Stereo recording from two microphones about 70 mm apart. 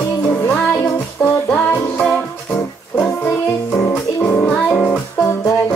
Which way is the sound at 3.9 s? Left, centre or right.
Left.